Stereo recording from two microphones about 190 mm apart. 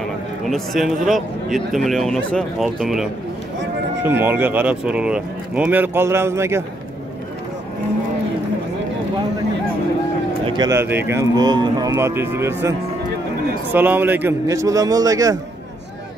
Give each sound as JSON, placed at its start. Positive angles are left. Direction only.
{"t": 0.5, "sound": "speech", "side_deg": 0}
{"t": 10.4, "sound": "speech", "side_deg": -25}
{"t": 13.7, "sound": "speech", "side_deg": -10}